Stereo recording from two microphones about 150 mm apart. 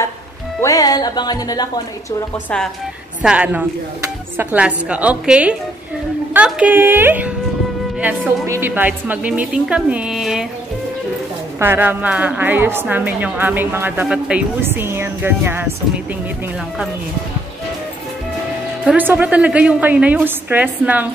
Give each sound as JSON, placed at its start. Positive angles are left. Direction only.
{"t": 0.6, "sound": "music", "side_deg": 25}
{"t": 3.2, "sound": "a woman's voice", "side_deg": -10}
{"t": 8.5, "sound": "a woman's voice", "side_deg": -15}
{"t": 11.6, "sound": "a woman's voice", "side_deg": -15}
{"t": 18.9, "sound": "a woman's voice", "side_deg": -10}